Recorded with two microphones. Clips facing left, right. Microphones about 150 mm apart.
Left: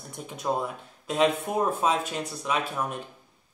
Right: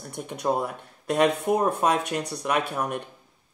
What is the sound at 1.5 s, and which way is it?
Speech, 10° right (ahead or behind).